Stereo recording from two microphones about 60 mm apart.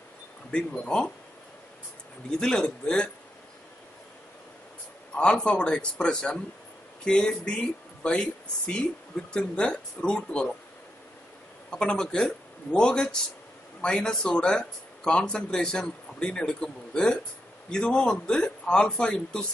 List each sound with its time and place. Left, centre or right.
0.5 s speech: centre
2.4 s speech: centre
5.1 s speech: centre
11.7 s speech: centre